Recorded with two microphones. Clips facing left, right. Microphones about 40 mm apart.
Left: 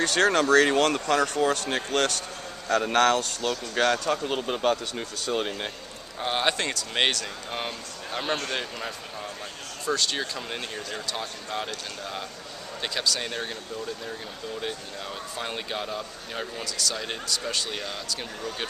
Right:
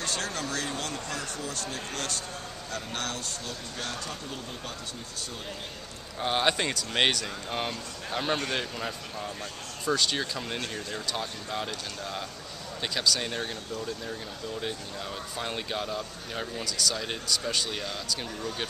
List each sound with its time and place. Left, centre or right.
0.0 s speech: left
2.7 s speech: left
6.1 s speech: centre
6.5 s speech: centre
14.6 s speech: centre